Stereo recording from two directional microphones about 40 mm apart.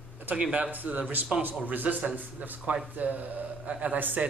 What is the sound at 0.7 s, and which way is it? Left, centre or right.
A man's voice, right.